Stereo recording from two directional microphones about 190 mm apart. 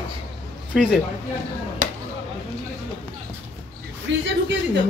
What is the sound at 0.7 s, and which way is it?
Speech, centre (ahead or behind).